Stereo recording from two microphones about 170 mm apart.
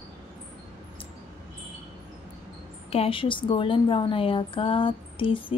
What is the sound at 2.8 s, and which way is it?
Speech, 35° left (ahead or behind).